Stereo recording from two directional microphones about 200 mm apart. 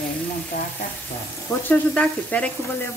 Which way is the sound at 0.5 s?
45° left (ahead or behind).